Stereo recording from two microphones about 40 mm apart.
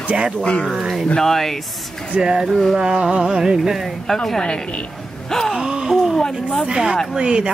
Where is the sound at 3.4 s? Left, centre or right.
Centre.